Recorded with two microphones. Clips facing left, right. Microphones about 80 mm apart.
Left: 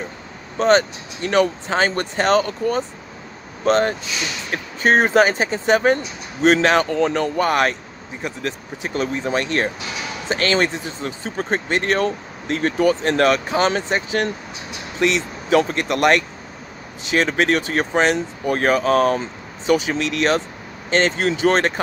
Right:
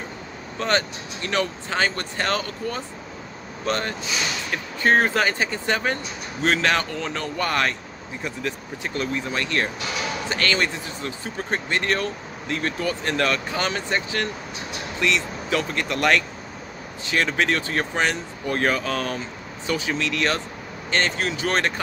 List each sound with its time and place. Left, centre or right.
0.6 s speech: left
6.9 s speech: left
8.8 s speech: left
17.1 s speech: left